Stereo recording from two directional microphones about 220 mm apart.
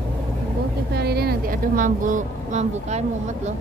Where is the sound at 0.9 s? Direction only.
45° right (ahead or behind); by 3.5 s 30° right (ahead or behind).